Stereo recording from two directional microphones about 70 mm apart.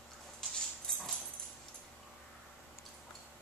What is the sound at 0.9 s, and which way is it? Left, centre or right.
Dog, centre.